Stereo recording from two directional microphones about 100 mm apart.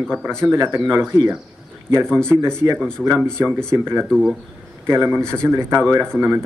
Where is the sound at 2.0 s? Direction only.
10° left (ahead or behind).